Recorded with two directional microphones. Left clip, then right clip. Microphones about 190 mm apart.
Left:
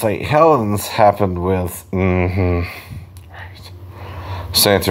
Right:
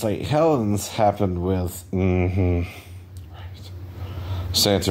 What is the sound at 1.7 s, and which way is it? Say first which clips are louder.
Speech: left 5 dB; 40° left (ahead or behind).